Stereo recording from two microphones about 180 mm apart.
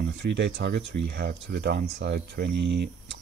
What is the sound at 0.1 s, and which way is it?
Speech, 80° right.